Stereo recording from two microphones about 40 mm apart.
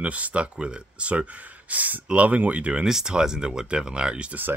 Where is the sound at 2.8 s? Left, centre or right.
Centre.